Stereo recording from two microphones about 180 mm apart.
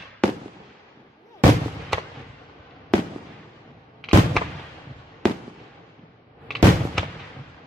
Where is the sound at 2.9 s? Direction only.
5° left (ahead or behind).